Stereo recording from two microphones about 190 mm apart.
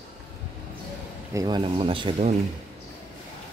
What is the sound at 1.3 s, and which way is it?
Speech, 20° right (ahead or behind).